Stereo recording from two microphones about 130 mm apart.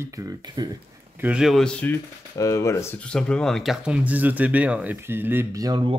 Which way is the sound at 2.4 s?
25° left (ahead or behind).